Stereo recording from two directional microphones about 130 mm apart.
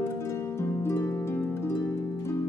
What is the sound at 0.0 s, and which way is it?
Harp, 20° left (ahead or behind).